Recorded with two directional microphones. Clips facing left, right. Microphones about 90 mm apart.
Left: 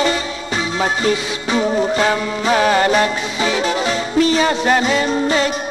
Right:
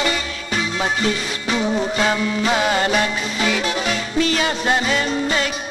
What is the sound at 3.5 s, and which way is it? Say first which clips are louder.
Music: left 4 dB; 30° left (ahead or behind).